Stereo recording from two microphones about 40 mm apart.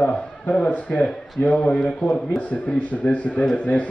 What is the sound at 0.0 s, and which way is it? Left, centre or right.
A man's voice, left.